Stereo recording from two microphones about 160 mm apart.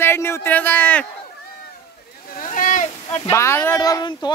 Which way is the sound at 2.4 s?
55° left (ahead or behind).